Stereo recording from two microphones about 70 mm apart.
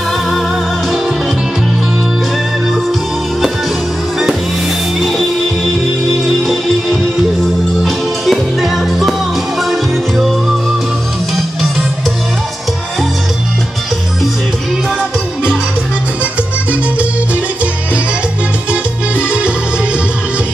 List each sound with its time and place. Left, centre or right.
6.2 s music: centre
18.7 s music: centre